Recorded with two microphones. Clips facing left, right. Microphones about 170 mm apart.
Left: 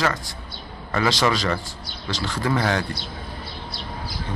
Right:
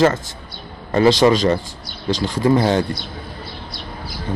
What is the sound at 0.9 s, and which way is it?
Speech, 25° right (ahead or behind).